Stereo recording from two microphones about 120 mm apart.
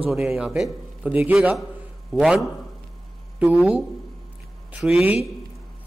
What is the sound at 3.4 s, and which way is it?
A man's voice, 5° right (ahead or behind).